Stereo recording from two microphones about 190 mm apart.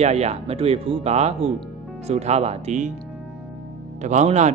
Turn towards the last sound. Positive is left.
turn(degrees=-35)  # may be behind; listen again after turning